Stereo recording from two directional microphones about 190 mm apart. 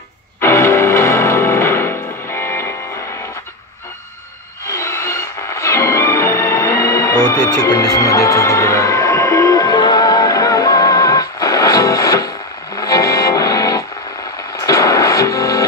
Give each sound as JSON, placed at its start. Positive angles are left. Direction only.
{"t": 0.4, "sound": "music", "side_deg": 15}
{"t": 4.6, "sound": "music", "side_deg": 15}